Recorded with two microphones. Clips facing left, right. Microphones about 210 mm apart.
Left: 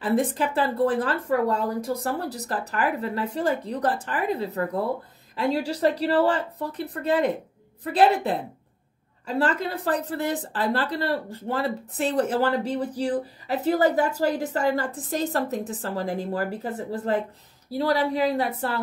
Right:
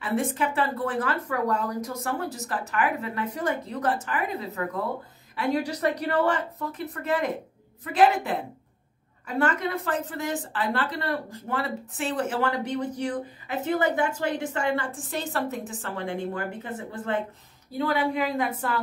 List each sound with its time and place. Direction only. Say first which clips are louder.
0.0 s a woman's voice: left 3 dB; 35° left (ahead or behind)